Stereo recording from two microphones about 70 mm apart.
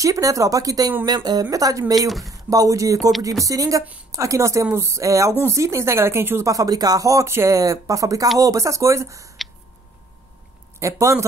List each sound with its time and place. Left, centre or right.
0.0 s speech: right
1.0 s speech: right
1.4 s speech: right
2.0 s speech: centre
2.3 s speech: right
6.5 s speech: right
7.2 s speech: right
10.8 s speech: right